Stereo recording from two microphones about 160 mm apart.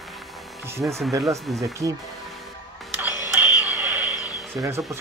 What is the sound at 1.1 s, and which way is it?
Speech, 20° right (ahead or behind).